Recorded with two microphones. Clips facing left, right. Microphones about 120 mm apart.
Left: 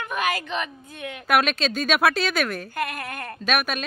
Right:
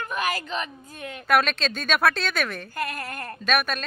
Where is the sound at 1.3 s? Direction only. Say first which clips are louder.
Left 1 dB; 5° left (ahead or behind).